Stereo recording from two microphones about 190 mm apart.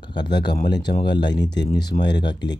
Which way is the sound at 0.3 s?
60° left (ahead or behind).